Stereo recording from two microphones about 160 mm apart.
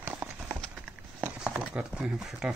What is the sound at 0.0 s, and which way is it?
Run, 10° right (ahead or behind).